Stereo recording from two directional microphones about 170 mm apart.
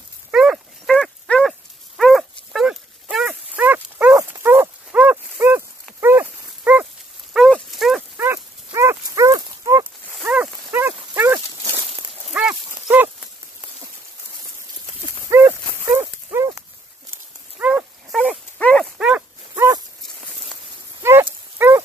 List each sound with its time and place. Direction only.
0.3 s dog: 5° right (ahead or behind)
7.3 s dog: centre (ahead or behind)
8.2 s dog: 15° right (ahead or behind)
12.3 s horse: 5° right (ahead or behind)
15.2 s horse: 15° right (ahead or behind)
17.6 s dog: 10° right (ahead or behind)
18.1 s dog: 5° left (ahead or behind)
18.9 s dog: 5° right (ahead or behind)
19.5 s dog: 15° right (ahead or behind)
21.0 s horse: 15° right (ahead or behind)
21.5 s dog: 10° right (ahead or behind)